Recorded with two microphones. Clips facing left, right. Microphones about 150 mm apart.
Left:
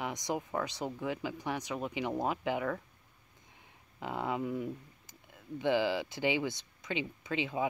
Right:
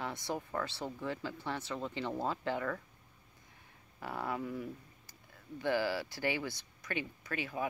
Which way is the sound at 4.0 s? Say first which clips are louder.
Left 3 dB; 20° left (ahead or behind).